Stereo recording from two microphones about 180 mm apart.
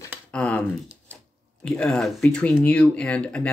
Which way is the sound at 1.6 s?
5° left (ahead or behind).